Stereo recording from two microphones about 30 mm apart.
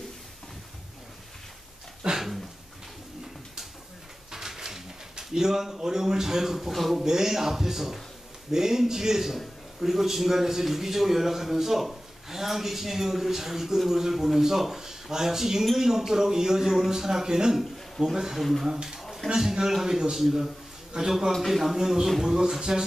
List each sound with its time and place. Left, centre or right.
2.0 s dog: centre
4.3 s pigeon: centre
6.7 s speech: centre
7.1 s a man's voice: centre
18.4 s speech: centre
18.7 s speech: centre
18.9 s a sound: centre
19.7 s a man's voice: centre
20.9 s speech: right
21.5 s speech: centre
21.7 s a man's voice: centre